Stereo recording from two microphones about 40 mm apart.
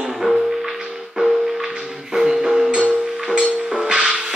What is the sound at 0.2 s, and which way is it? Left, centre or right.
Music, centre.